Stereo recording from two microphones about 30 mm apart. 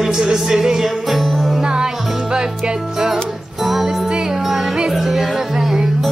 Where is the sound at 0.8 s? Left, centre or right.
Centre.